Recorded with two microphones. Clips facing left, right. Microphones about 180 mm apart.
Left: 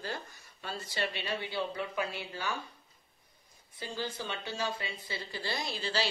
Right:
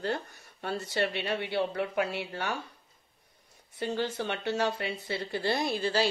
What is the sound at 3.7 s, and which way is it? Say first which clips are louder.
Speech: right 7 dB; 65° right (ahead or behind).